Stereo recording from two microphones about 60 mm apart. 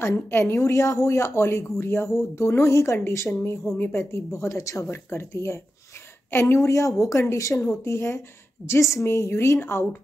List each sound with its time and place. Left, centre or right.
0.0 s speech: left
3.7 s a woman's voice: left
4.0 s speech: left
4.9 s speech: left
8.6 s speech: left